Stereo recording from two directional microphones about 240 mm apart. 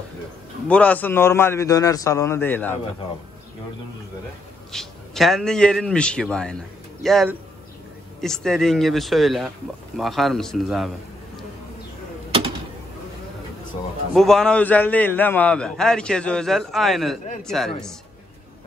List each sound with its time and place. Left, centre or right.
0.7 s a man's voice: centre
4.7 s a man's voice: centre
14.1 s a man's voice: centre